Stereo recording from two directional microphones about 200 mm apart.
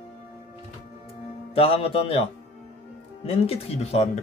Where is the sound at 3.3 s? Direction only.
30° left (ahead or behind).